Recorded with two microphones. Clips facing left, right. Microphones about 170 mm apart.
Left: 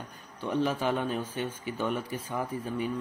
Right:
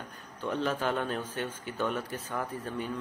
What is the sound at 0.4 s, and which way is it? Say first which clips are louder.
A man's voice: left 2 dB; 10° left (ahead or behind).